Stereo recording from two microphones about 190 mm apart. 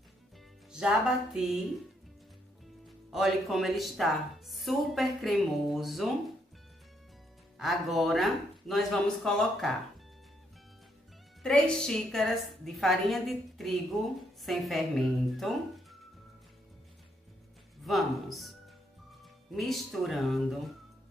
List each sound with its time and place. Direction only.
0.7 s a woman's voice: 5° right (ahead or behind)
3.1 s a woman's voice: centre (ahead or behind)
7.5 s a woman's voice: centre (ahead or behind)
11.4 s a woman's voice: 5° left (ahead or behind)
17.8 s a woman's voice: centre (ahead or behind)
19.5 s a woman's voice: centre (ahead or behind)